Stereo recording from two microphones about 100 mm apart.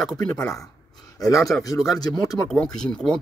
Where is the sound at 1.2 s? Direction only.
35° left (ahead or behind).